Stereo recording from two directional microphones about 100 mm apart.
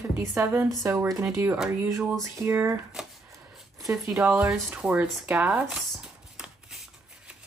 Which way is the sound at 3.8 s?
30° right (ahead or behind).